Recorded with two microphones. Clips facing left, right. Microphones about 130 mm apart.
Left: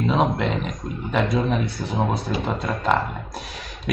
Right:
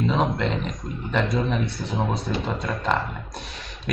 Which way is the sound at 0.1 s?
5° left (ahead or behind).